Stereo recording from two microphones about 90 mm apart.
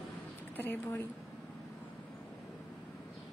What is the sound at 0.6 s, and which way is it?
Speech, 25° left (ahead or behind).